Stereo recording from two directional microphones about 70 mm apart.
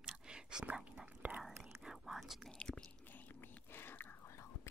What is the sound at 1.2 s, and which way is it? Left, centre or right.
Whispering, right.